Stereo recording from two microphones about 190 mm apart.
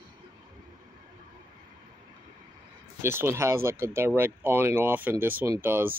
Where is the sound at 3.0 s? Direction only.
15° right (ahead or behind).